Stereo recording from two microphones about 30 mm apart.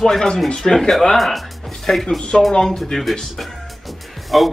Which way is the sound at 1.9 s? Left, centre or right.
Left.